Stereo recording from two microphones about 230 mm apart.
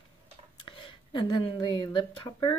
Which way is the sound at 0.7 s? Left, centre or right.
Left.